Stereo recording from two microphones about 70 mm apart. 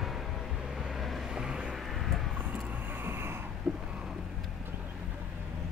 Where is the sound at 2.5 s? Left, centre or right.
Right.